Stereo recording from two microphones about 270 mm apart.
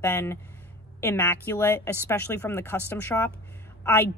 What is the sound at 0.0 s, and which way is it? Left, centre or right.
Speech, centre.